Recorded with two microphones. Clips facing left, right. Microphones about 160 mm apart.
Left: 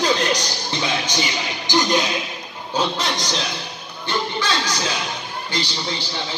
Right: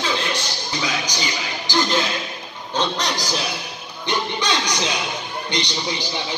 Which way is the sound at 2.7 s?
5° left (ahead or behind).